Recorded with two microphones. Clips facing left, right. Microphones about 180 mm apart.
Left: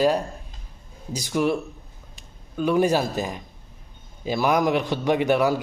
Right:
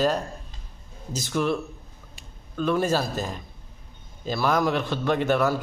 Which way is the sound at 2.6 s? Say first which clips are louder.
Left 3 dB; 15° left (ahead or behind).